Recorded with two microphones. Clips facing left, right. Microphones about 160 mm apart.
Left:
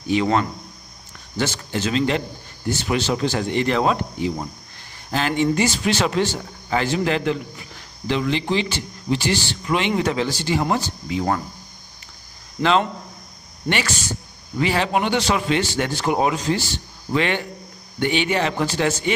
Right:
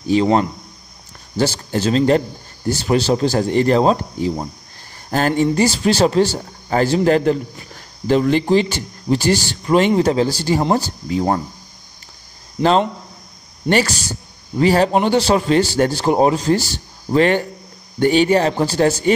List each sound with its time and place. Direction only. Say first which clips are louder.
0.0 s a man's voice: right 5 dB; 35° right (ahead or behind)
12.6 s speech: right 4 dB; 20° right (ahead or behind)
13.7 s a man's voice: right 7 dB; 40° right (ahead or behind)